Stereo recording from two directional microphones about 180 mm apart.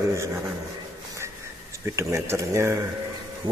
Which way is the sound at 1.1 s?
15° right (ahead or behind).